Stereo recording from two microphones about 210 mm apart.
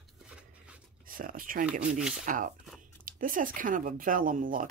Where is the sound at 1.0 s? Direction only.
40° right (ahead or behind).